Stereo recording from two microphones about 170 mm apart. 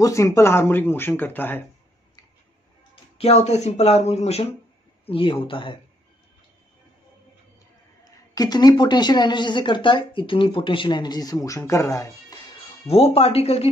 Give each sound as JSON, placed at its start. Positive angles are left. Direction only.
{"t": 0.0, "sound": "speech", "side_deg": 20}
{"t": 3.2, "sound": "speech", "side_deg": 40}
{"t": 8.4, "sound": "speech", "side_deg": 25}
{"t": 12.8, "sound": "speech", "side_deg": 35}